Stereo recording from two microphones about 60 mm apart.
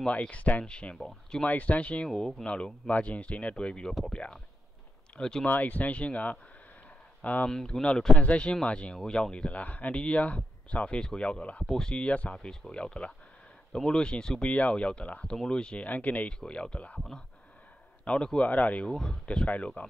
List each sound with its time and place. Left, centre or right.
0.0 s speech: centre
2.0 s speech: centre
2.4 s speech: centre
5.5 s speech: left
7.4 s speech: centre
18.0 s speech: centre
18.9 s speech: centre